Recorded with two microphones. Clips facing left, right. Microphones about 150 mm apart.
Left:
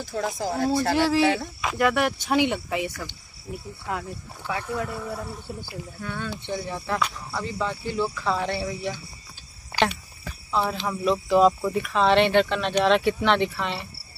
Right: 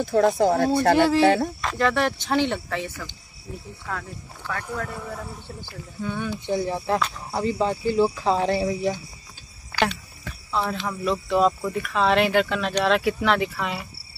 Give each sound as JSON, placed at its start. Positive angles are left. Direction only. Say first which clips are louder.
{"t": 0.0, "sound": "speech", "louder": "right 9 dB", "side_deg": -55}
{"t": 1.6, "sound": "speech", "louder": "even", "side_deg": 10}
{"t": 4.7, "sound": "speech", "louder": "left 2 dB", "side_deg": 5}
{"t": 5.9, "sound": "speech", "louder": "right 5 dB", "side_deg": -15}
{"t": 6.5, "sound": "speech", "louder": "right 6 dB", "side_deg": -35}
{"t": 9.8, "sound": "cricket", "louder": "even", "side_deg": 5}
{"t": 10.9, "sound": "speech", "louder": "left 2 dB", "side_deg": 0}